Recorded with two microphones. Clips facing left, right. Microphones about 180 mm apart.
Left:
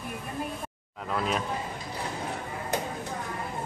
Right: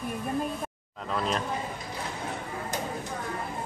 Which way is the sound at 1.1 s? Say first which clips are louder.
Even; 5° left (ahead or behind).